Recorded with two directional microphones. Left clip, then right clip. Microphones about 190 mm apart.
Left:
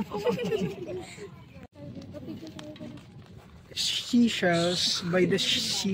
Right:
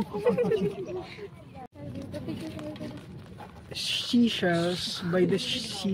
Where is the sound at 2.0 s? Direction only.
60° right (ahead or behind).